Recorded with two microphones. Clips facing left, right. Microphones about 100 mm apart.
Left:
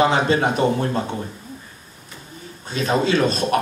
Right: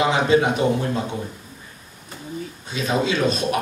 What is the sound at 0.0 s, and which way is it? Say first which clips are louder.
A man's voice: even; 40° left (ahead or behind).